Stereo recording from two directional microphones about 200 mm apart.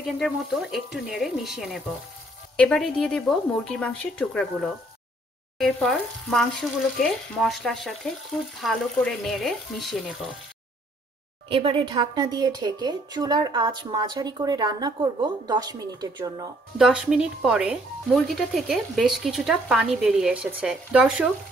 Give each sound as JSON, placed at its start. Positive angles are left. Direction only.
{"t": 0.2, "sound": "speech", "side_deg": 0}
{"t": 11.4, "sound": "speech", "side_deg": -25}
{"t": 16.7, "sound": "speech", "side_deg": -5}